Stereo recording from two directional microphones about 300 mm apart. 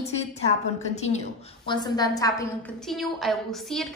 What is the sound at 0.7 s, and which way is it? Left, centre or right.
A woman's voice, left.